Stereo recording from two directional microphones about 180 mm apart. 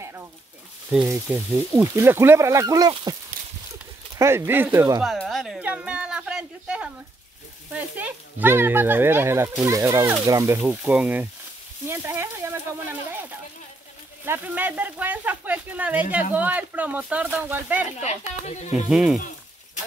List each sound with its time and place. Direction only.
0.0 s a sound: 15° right (ahead or behind)
0.8 s speech: 10° right (ahead or behind); by 3.2 s 25° right (ahead or behind)
4.2 s speech: 15° right (ahead or behind)
5.0 s speech: centre (ahead or behind)
18.4 s speech: 40° left (ahead or behind)
18.9 s speech: 5° right (ahead or behind)
19.1 s frying: 45° left (ahead or behind)